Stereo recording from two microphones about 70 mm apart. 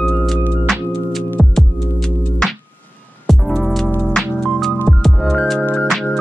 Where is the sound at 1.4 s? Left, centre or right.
Centre.